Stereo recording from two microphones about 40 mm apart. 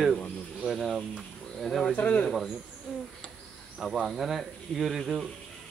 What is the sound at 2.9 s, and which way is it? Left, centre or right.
Insect, centre.